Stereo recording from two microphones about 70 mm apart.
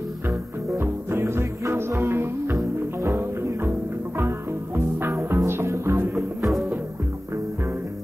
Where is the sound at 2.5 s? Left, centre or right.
Right.